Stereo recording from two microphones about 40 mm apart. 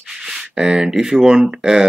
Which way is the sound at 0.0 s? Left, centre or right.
Centre.